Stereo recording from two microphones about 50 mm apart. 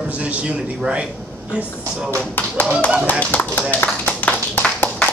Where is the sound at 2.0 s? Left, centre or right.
Left.